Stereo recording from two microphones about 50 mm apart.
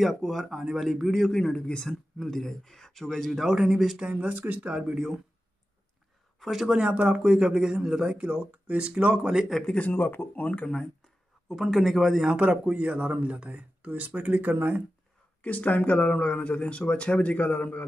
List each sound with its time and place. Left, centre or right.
0.0 s speech: centre
1.4 s speech: centre
4.1 s speech: right
4.6 s speech: centre
6.4 s speech: centre
6.8 s speech: right
9.8 s speech: left
11.4 s speech: centre
12.3 s speech: right
15.4 s speech: left